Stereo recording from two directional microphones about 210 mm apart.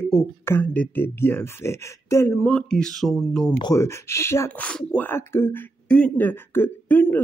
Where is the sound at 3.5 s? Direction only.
15° left (ahead or behind).